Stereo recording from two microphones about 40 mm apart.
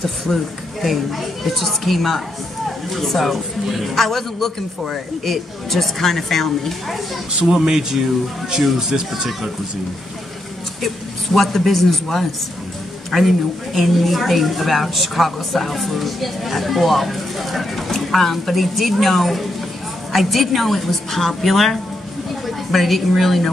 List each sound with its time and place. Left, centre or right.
0.3 s a man's voice: centre
7.4 s speech: centre
11.3 s a man's voice: centre